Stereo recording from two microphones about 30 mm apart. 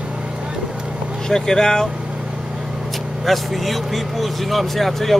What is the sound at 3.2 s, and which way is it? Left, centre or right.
Speech, centre.